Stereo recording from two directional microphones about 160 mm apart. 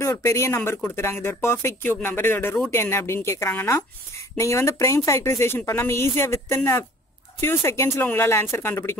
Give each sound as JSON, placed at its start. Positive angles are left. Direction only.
{"t": 0.0, "sound": "speech", "side_deg": 15}